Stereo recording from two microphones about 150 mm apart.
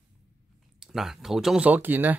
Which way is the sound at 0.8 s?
Centre (ahead or behind).